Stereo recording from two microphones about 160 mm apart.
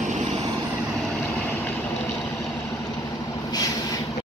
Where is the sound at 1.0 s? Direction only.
5° left (ahead or behind).